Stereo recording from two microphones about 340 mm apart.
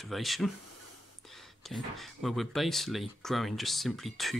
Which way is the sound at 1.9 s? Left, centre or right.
Centre.